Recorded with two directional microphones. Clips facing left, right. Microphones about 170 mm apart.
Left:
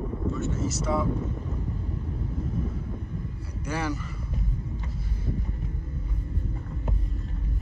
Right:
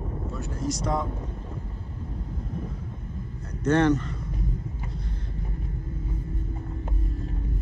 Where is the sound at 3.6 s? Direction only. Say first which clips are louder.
Right 10 dB; 10° left (ahead or behind).